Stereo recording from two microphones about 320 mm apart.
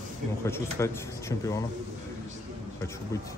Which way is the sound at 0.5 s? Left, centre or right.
Centre.